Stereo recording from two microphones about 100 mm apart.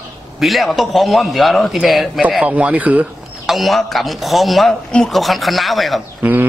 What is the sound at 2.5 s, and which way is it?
Speech, 15° right (ahead or behind).